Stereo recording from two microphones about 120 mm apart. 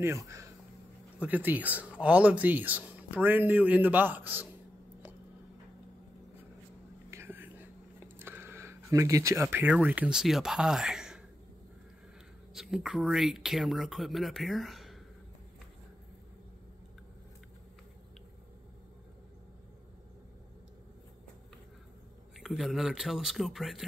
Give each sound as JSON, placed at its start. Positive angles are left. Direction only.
{"t": 0.0, "sound": "speech", "side_deg": -25}
{"t": 1.2, "sound": "speech", "side_deg": -15}
{"t": 7.1, "sound": "whispering", "side_deg": -20}
{"t": 12.5, "sound": "speech", "side_deg": -5}
{"t": 22.4, "sound": "speech", "side_deg": 0}